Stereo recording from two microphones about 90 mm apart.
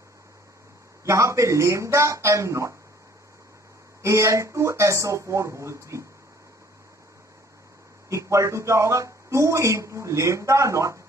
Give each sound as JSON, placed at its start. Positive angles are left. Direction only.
{"t": 1.0, "sound": "speech", "side_deg": -35}
{"t": 4.0, "sound": "speech", "side_deg": -30}
{"t": 8.1, "sound": "speech", "side_deg": -35}